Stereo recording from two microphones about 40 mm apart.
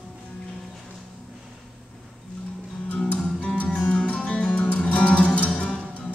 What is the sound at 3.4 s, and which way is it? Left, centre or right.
Music, left.